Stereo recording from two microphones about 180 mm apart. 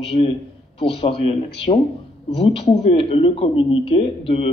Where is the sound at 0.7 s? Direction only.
30° left (ahead or behind).